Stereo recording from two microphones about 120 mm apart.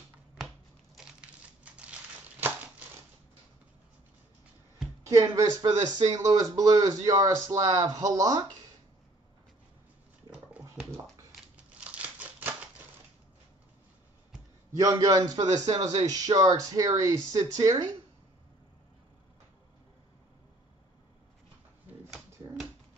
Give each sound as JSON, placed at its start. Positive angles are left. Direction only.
{"t": 1.6, "sound": "crumpling", "side_deg": -10}
{"t": 5.0, "sound": "speech", "side_deg": -25}
{"t": 10.8, "sound": "a sound", "side_deg": 0}
{"t": 11.8, "sound": "crumpling", "side_deg": -10}
{"t": 14.7, "sound": "a man's voice", "side_deg": -25}